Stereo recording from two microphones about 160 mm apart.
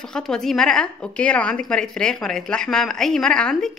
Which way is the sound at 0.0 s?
5° left (ahead or behind).